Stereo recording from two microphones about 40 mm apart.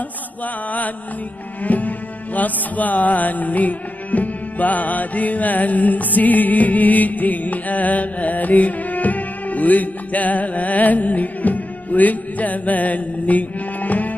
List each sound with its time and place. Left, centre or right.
0.7 s mantra: left
1.6 s music: left